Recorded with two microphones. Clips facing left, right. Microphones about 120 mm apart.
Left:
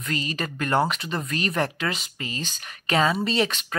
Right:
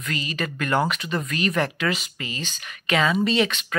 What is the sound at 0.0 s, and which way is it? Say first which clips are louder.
Speech: even; 35° left (ahead or behind).